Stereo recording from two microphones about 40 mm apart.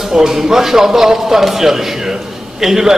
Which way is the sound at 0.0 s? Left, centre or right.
Centre.